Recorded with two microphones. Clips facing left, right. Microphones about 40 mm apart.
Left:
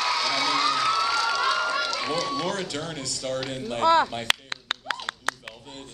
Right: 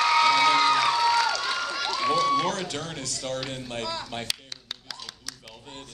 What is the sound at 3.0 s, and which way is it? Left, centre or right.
Mantra, right.